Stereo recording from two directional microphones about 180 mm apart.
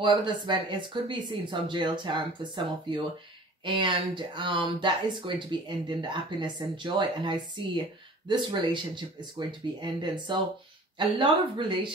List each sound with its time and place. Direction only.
0.0 s speech: 25° right (ahead or behind)